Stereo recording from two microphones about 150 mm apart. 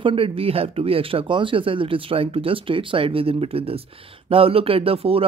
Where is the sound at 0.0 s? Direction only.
35° right (ahead or behind).